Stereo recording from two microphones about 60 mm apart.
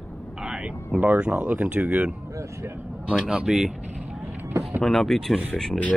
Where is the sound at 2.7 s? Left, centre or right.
Right.